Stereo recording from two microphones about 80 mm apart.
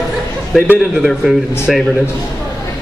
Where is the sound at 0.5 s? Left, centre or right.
Centre.